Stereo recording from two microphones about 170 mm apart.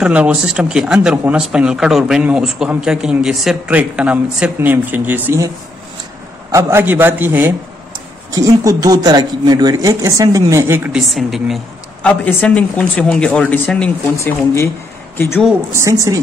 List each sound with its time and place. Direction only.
0.0 s speech: 5° right (ahead or behind)
6.5 s speech: 15° right (ahead or behind); by 13.9 s 5° left (ahead or behind)
14.1 s speech: 15° left (ahead or behind)
15.7 s speech: 20° right (ahead or behind)